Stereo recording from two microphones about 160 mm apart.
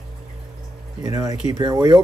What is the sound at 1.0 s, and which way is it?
Speech, 20° right (ahead or behind).